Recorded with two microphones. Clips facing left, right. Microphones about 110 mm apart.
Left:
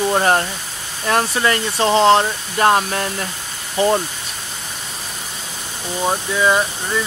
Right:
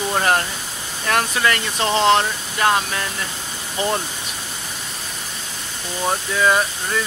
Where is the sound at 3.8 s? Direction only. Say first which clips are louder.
Left 6 dB; 15° left (ahead or behind).